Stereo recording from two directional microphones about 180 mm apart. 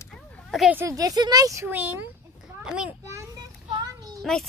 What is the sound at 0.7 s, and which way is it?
A child's voice, 20° right (ahead or behind).